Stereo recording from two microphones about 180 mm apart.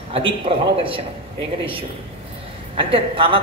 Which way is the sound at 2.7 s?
30° right (ahead or behind).